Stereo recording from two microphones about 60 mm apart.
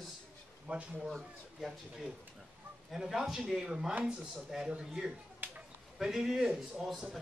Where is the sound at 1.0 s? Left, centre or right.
Centre.